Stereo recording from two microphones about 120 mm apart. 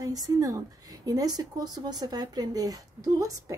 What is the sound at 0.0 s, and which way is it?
A woman's voice, 30° right (ahead or behind).